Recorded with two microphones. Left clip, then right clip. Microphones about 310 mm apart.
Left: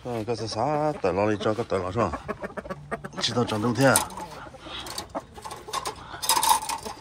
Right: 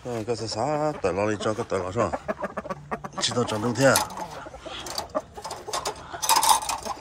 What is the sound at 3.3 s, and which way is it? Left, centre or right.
Speech, centre.